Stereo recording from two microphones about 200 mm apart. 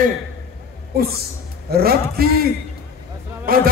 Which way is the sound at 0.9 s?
50° right (ahead or behind).